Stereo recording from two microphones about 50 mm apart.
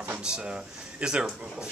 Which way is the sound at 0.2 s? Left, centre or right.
Centre.